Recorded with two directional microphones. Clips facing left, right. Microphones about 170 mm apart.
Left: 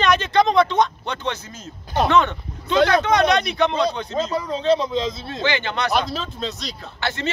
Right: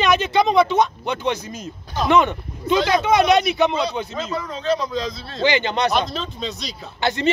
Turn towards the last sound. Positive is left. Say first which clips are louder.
# right 6 dB
turn(degrees=-15)  # may be behind; listen again after turning